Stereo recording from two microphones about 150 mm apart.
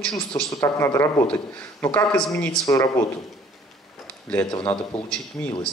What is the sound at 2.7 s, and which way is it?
Speech, 20° left (ahead or behind).